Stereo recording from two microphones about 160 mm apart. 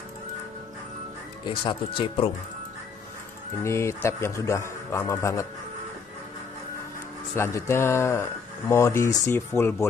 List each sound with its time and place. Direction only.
1.5 s speech: 35° left (ahead or behind)
3.6 s speech: 15° left (ahead or behind)
7.3 s speech: 15° left (ahead or behind)